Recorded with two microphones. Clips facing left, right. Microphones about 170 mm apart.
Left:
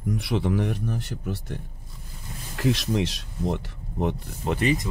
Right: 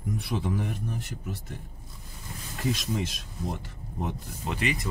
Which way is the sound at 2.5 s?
80° left.